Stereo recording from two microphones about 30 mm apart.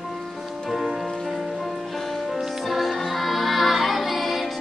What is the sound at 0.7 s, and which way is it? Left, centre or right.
Music, centre.